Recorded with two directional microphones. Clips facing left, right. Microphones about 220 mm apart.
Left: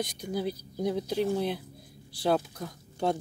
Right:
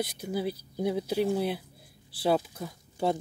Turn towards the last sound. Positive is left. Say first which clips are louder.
# right 1 dB
turn(degrees=-5)  # may be behind; listen again after turning